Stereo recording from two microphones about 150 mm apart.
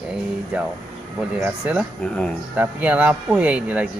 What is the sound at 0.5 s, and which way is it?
Speech, 10° right (ahead or behind).